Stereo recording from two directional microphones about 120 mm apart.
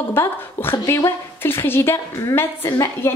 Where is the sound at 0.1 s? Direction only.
20° left (ahead or behind).